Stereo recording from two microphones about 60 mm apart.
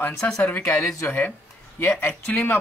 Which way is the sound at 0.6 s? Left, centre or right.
Left.